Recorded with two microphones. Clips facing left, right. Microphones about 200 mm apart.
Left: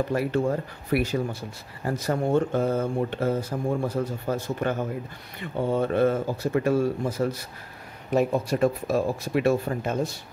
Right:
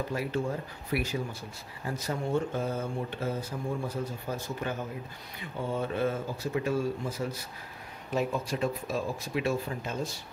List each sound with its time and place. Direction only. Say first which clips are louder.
0.1 s a man's voice: left 7 dB; 60° left (ahead or behind)